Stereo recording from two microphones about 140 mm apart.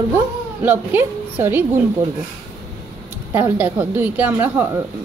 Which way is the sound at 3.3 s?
10° right (ahead or behind).